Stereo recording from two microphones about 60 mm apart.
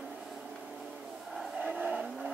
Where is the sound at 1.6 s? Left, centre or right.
Right.